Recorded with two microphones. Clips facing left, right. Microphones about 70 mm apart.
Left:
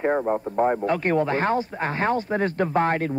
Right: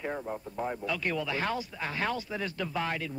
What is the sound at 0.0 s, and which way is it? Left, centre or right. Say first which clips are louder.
Speech: left 13 dB; left.